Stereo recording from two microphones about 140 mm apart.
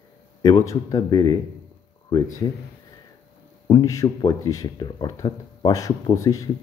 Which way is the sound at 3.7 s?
25° left (ahead or behind).